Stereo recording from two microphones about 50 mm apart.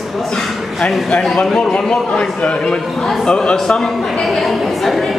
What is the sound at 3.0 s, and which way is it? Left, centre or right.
Speech, centre.